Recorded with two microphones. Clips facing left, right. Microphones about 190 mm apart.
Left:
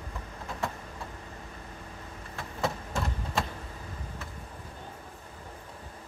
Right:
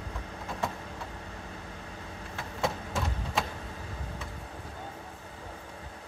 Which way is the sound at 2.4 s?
Centre (ahead or behind).